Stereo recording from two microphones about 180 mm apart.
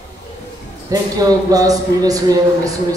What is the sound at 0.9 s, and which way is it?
Speech, 20° right (ahead or behind).